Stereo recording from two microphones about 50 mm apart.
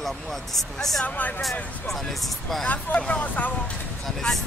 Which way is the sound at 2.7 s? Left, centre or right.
Left.